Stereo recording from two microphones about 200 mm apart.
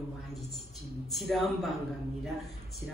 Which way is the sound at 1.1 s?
Centre (ahead or behind).